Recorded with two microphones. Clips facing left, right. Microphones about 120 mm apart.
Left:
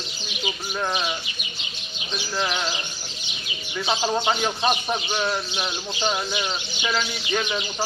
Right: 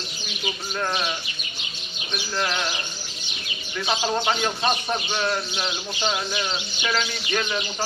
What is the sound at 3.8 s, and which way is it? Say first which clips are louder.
Speech: left 1 dB; 15° left (ahead or behind).